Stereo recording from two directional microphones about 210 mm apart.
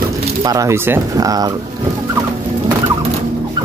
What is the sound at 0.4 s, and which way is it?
Speech, 15° right (ahead or behind).